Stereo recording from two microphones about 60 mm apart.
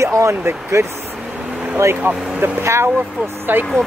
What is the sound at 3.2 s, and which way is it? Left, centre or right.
Speech, right.